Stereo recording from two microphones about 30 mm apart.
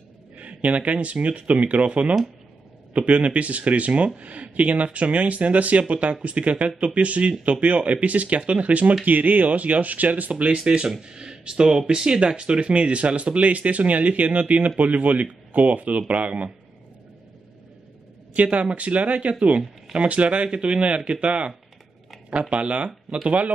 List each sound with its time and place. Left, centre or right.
0.4 s speech: right
9.0 s speech: right
10.7 s speech: right
11.1 s speech: right
18.3 s speech: right
20.5 s speech: right